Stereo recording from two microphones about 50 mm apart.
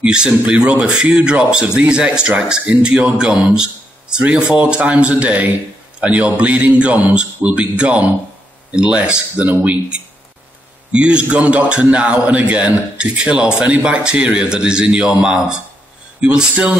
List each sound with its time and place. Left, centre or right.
0.0 s a man's voice: centre
7.7 s speech: right